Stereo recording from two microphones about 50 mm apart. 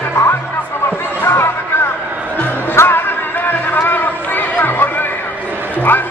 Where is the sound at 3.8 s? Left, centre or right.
Left.